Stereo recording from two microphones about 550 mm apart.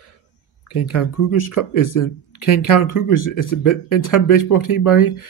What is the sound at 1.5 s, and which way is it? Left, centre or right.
Speech, left.